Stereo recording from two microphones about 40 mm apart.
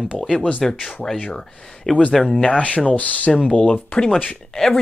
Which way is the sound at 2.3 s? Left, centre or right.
Left.